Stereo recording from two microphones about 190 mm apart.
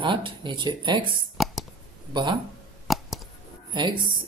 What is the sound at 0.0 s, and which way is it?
A woman's voice, 25° right (ahead or behind).